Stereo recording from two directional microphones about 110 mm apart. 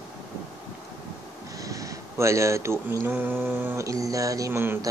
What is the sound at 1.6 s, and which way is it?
Speech, 30° right (ahead or behind).